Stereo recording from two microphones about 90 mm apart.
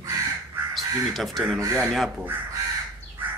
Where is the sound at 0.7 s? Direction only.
Centre (ahead or behind).